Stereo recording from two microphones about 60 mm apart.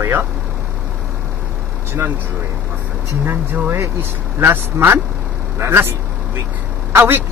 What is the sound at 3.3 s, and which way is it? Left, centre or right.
A man's voice, right.